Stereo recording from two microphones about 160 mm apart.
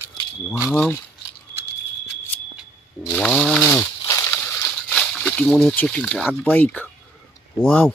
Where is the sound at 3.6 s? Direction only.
15° left (ahead or behind).